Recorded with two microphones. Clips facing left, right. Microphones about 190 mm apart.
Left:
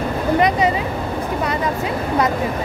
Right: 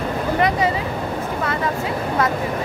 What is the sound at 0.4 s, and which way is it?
Vehicle, 20° left (ahead or behind).